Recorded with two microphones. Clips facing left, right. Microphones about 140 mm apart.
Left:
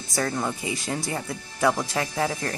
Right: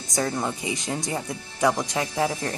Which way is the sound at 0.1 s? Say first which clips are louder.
Right 1 dB; 20° right (ahead or behind).